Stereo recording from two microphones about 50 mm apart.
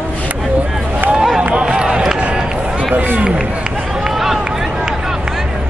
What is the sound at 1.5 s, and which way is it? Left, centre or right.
Run, centre.